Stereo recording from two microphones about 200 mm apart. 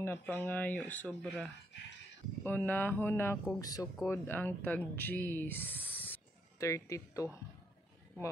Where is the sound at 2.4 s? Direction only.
10° left (ahead or behind).